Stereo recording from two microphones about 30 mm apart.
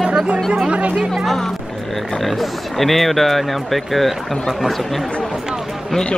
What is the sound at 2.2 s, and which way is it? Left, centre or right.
Speech, centre.